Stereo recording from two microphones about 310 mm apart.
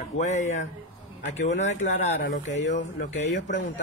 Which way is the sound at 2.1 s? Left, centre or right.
Left.